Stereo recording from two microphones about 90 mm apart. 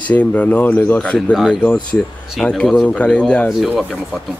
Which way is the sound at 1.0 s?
10° left (ahead or behind).